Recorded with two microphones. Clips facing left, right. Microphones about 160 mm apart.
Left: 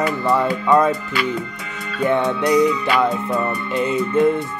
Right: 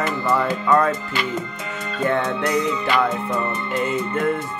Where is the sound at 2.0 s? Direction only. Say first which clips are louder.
Left 3 dB; 15° left (ahead or behind).